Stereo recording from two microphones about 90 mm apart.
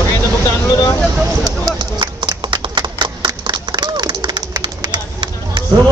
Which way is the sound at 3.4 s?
60° right (ahead or behind).